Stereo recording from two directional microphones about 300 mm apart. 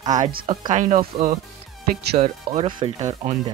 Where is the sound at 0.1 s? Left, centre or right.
Right.